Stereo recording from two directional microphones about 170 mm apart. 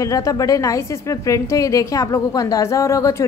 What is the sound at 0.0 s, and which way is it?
A woman's voice, 20° left (ahead or behind).